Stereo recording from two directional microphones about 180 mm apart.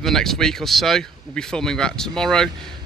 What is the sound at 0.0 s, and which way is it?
Speech, centre (ahead or behind).